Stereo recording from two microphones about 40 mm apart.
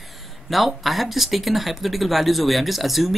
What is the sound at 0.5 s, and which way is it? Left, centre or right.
Speech, centre.